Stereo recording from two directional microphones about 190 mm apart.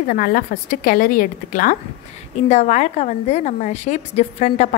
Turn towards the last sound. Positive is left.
turn(degrees=35)  # may be behind; listen again after turning